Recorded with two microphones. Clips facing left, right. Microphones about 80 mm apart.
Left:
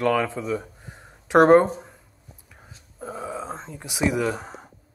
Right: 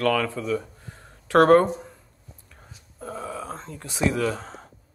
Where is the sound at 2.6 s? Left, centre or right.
Centre.